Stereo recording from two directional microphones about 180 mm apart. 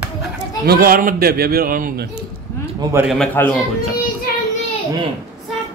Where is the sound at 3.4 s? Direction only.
15° left (ahead or behind).